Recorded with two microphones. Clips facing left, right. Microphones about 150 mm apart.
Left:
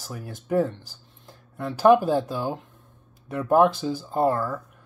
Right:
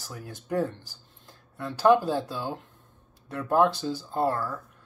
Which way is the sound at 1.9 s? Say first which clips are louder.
Left 4 dB; 15° left (ahead or behind).